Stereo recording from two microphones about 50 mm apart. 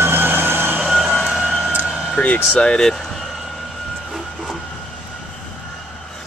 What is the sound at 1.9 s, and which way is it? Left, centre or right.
Vehicle, centre.